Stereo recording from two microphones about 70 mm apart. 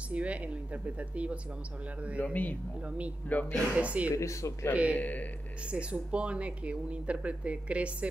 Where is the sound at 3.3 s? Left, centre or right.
Left.